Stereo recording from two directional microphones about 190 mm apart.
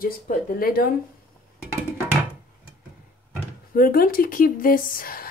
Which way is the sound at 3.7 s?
50° left (ahead or behind).